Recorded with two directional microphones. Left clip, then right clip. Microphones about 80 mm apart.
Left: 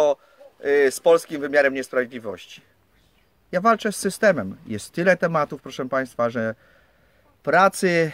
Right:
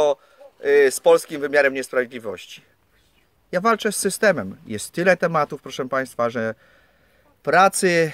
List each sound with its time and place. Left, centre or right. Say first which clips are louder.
0.0 s speech: even; right